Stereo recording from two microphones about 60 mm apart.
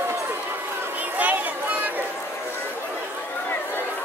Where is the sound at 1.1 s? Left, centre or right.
Right.